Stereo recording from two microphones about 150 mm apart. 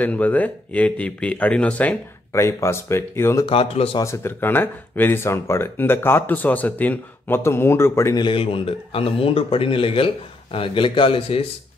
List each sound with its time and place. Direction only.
0.0 s speech: 10° left (ahead or behind)
3.4 s a man's voice: 40° left (ahead or behind)
4.0 s speech: 15° left (ahead or behind)
8.2 s a man's voice: 35° left (ahead or behind)